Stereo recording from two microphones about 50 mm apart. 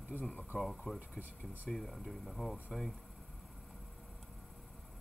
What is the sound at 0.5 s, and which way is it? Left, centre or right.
Speech, centre.